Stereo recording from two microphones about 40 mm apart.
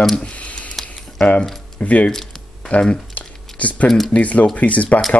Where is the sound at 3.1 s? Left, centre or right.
Left.